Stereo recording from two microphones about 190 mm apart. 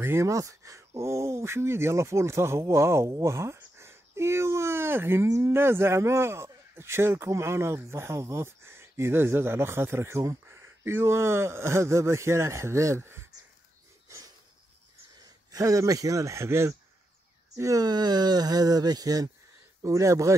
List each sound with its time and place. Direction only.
0.0 s speech: 15° right (ahead or behind)
14.0 s a sound: 15° right (ahead or behind)
15.5 s speech: 15° right (ahead or behind)